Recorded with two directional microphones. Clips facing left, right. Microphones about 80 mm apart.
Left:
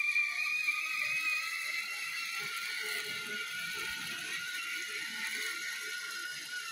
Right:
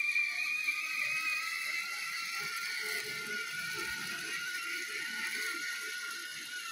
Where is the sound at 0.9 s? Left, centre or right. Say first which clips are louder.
Even; centre.